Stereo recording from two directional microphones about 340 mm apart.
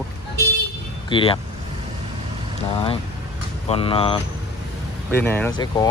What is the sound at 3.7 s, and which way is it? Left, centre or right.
Speech, centre.